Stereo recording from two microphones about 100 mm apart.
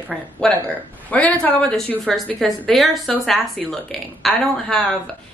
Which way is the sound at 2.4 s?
Centre (ahead or behind).